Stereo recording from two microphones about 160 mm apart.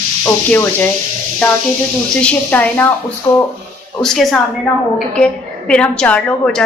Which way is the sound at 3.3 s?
20° left (ahead or behind).